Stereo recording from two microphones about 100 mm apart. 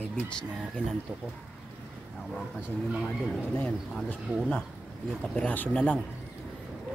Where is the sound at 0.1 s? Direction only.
10° left (ahead or behind).